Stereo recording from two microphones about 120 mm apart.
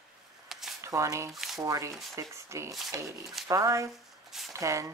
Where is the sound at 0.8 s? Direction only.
25° right (ahead or behind).